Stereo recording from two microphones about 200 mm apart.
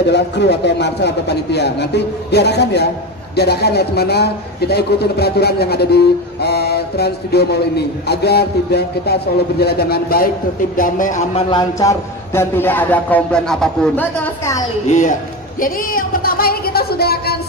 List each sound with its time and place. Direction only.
0.1 s a man's voice: 60° left (ahead or behind); by 11.4 s 40° left (ahead or behind)
11.5 s speech: 15° left (ahead or behind)
14.9 s a man's voice: 40° left (ahead or behind)